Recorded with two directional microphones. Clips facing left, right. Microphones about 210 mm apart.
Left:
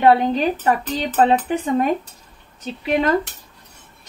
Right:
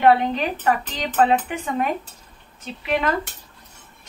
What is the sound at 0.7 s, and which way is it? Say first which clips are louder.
Speech: left 3 dB; 35° left (ahead or behind).